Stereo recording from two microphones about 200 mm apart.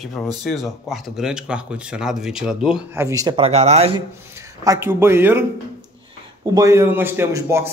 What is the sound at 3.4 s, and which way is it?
Speech, 30° right (ahead or behind).